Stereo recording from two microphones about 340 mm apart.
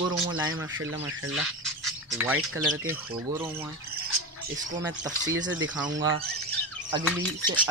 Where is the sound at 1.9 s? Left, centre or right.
Centre.